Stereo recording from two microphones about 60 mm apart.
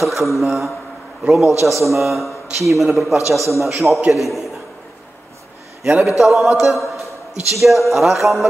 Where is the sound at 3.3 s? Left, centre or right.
Right.